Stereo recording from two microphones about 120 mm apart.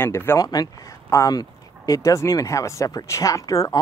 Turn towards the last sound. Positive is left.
turn(degrees=30)  # may be behind; listen again after turning